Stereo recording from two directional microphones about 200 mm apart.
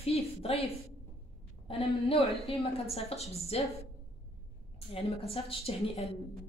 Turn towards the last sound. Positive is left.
turn(degrees=30)  # may be behind; listen again after turning